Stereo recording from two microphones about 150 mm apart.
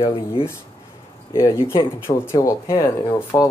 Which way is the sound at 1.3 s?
15° left (ahead or behind).